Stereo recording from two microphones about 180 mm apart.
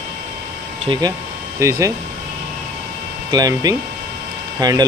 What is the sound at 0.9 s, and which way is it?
Speech, 25° right (ahead or behind).